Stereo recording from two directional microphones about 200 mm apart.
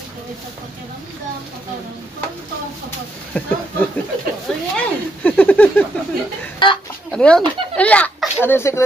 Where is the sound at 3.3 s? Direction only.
5° left (ahead or behind).